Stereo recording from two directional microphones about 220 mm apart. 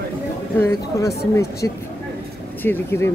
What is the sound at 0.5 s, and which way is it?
Speech, 10° left (ahead or behind).